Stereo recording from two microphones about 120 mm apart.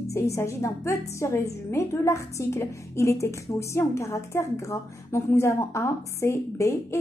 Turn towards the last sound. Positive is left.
turn(degrees=25)  # may be behind; listen again after turning